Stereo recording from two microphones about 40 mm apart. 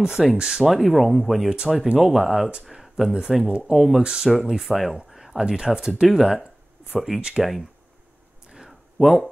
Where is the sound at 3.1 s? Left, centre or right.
Centre.